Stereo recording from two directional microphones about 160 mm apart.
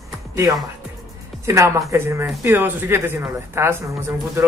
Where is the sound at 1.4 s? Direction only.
20° right (ahead or behind).